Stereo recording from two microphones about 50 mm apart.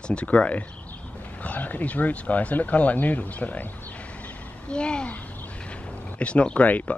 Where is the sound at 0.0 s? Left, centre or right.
Left.